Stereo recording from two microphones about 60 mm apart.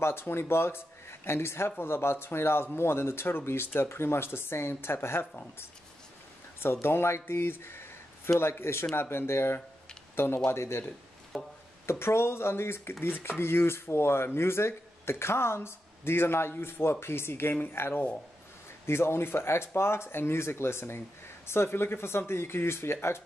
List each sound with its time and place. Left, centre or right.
0.0 s speech: left
5.2 s speech: left
6.6 s speech: left
11.3 s music: centre
11.8 s speech: left